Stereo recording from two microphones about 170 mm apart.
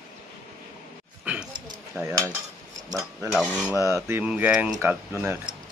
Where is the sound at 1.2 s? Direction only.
5° right (ahead or behind).